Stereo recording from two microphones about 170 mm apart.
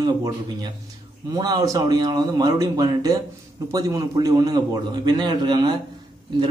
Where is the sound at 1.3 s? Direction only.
20° right (ahead or behind).